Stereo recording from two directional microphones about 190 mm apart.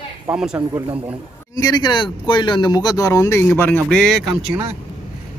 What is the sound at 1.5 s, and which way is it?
A man's voice, 20° left (ahead or behind).